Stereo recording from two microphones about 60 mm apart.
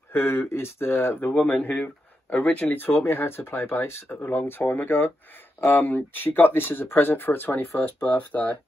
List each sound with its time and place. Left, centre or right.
0.1 s speech: left